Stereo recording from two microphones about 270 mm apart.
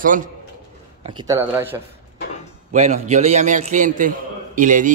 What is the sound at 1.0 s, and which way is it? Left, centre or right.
Speech, centre.